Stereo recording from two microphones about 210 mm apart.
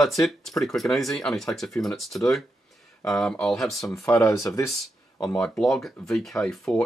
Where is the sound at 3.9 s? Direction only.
15° left (ahead or behind).